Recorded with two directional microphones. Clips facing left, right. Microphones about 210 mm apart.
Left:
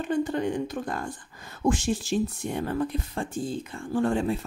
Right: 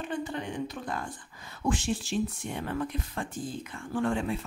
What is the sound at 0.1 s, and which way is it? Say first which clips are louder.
Speech: left 10 dB; 45° left (ahead or behind).